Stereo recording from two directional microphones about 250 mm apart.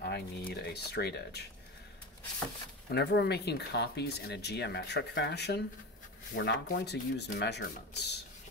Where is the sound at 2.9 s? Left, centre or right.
Left.